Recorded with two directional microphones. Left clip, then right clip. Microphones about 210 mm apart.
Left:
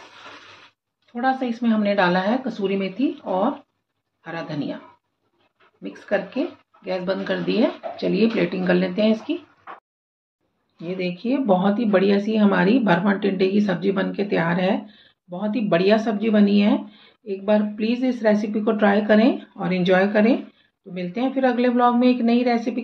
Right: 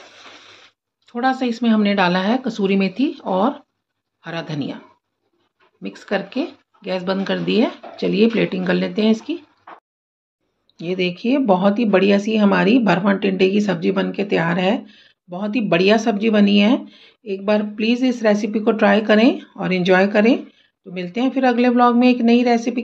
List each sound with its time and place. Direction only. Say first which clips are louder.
1.1 s speech: right 3 dB; 40° right (ahead or behind)
5.8 s speech: right 1 dB; 40° right (ahead or behind)
10.8 s speech: right 6 dB; 40° right (ahead or behind)